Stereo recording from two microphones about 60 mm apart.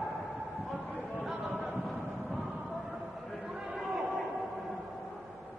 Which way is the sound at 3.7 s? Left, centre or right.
Centre.